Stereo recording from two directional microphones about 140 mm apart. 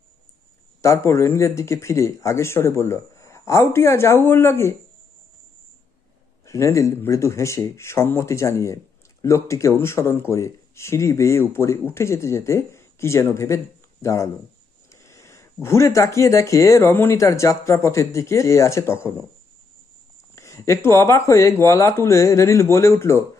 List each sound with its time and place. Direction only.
0.8 s speech: 20° left (ahead or behind)
6.4 s speech: 20° left (ahead or behind)
20.3 s speech: 20° left (ahead or behind)